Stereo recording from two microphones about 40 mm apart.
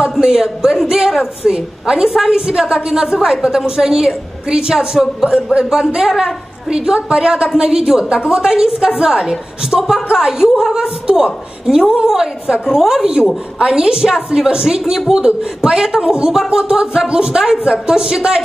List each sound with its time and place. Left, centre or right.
0.2 s a woman's voice: centre
5.9 s a woman's voice: right
6.1 s a woman's voice: centre
16.4 s a woman's voice: right